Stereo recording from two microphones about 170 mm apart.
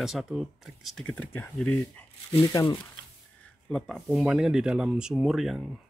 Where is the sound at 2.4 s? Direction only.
20° left (ahead or behind).